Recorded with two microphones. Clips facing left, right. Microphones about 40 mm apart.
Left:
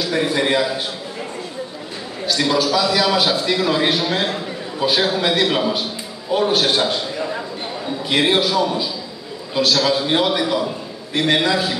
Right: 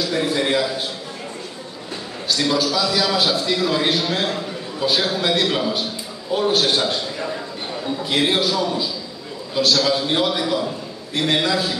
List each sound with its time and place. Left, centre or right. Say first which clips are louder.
0.1 s a man's voice: left 3 dB; centre
2.4 s a man's voice: left 3 dB; centre
8.1 s a man's voice: left 3 dB; left